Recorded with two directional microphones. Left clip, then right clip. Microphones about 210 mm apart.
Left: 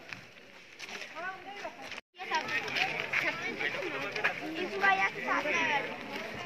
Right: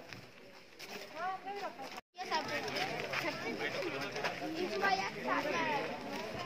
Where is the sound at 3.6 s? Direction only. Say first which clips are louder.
Left 4 dB; 20° right (ahead or behind).